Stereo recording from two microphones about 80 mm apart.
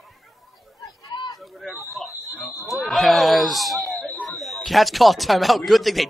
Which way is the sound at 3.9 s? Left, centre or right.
Centre.